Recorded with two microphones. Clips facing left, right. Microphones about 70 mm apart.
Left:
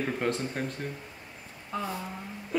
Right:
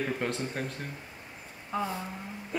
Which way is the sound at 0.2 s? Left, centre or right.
Centre.